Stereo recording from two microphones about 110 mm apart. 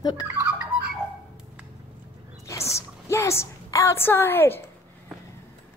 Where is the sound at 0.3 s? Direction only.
20° right (ahead or behind).